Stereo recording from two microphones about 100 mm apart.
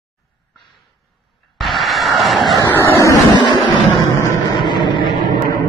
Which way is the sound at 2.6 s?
25° left (ahead or behind).